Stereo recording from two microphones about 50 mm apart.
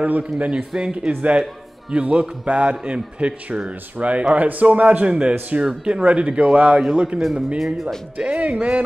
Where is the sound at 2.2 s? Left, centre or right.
Right.